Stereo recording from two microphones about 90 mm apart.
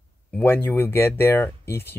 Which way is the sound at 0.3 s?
20° left (ahead or behind).